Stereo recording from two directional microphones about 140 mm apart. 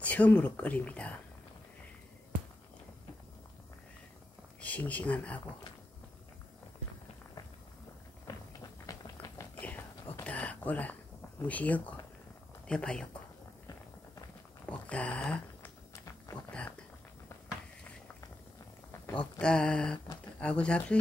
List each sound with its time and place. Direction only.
0.0 s speech: 10° left (ahead or behind)
4.6 s speech: 10° left (ahead or behind)
8.3 s tap: 25° left (ahead or behind)
9.6 s whispering: 10° left (ahead or behind)
10.2 s a sound: 10° left (ahead or behind)
12.6 s speech: 5° left (ahead or behind)
14.7 s speech: 10° left (ahead or behind)
16.4 s a sound: 10° left (ahead or behind)
18.9 s speech: 10° left (ahead or behind)